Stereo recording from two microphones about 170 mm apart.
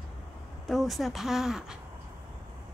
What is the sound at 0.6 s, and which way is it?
Speech, centre (ahead or behind).